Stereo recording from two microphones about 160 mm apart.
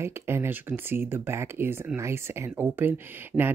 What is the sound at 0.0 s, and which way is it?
Speech, 15° right (ahead or behind).